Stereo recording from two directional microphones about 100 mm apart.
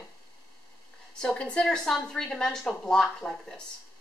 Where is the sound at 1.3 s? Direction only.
10° left (ahead or behind).